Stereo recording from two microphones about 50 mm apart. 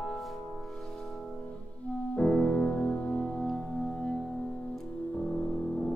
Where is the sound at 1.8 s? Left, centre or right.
Left.